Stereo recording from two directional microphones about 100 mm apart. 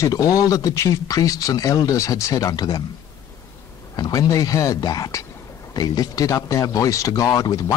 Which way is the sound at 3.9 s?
40° left (ahead or behind).